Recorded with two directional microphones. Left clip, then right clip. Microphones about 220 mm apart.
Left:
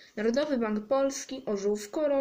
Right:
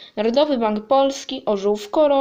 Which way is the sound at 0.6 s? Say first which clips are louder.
Right 10 dB; 45° right (ahead or behind).